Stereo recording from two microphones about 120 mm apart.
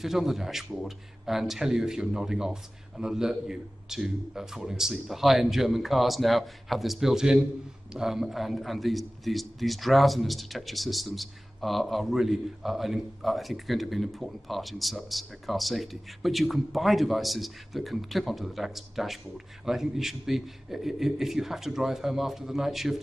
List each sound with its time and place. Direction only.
0.0 s a man's voice: centre (ahead or behind)